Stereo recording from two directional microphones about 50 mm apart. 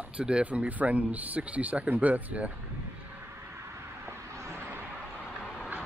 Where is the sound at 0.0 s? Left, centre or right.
Right.